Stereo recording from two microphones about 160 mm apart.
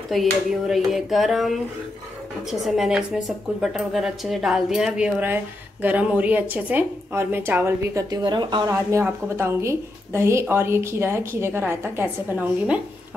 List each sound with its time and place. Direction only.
0.1 s a woman's voice: centre (ahead or behind)
2.6 s a woman's voice: centre (ahead or behind); by 8.6 s 30° right (ahead or behind)
8.6 s a woman's voice: 15° right (ahead or behind)